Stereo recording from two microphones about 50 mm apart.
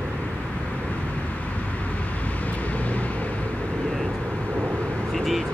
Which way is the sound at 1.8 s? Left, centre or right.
Left.